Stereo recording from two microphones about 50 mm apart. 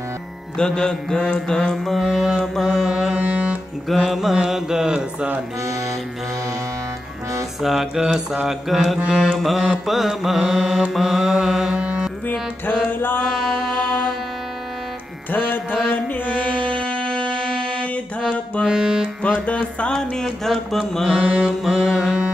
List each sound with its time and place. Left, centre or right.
0.6 s mantra: centre
2.0 s mantra: centre
3.2 s music: right
3.9 s mantra: centre
4.9 s speech: right
7.6 s mantra: centre
11.8 s music: right
12.3 s music: left
15.3 s music: left
16.7 s music: centre
18.7 s music: centre
19.2 s music: left
20.2 s mantra: centre
21.2 s mantra: centre